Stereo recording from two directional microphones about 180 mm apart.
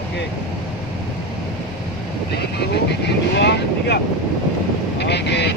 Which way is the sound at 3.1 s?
70° left (ahead or behind).